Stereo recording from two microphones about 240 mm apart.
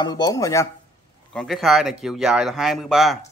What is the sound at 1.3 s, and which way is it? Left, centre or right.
A man's voice, centre.